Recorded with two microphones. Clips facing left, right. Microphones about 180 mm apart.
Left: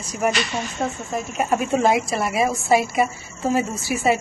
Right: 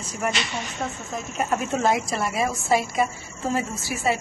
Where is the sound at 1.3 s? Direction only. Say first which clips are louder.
Left 4 dB; 15° left (ahead or behind).